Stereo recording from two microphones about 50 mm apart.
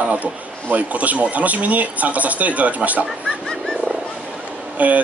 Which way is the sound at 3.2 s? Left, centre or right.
Centre.